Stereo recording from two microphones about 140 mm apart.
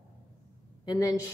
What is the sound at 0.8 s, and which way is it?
Speech, 30° left (ahead or behind).